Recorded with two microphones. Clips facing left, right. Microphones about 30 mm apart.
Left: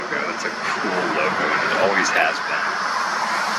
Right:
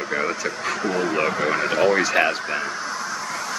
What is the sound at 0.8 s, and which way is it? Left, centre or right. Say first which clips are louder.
Speech: even; left.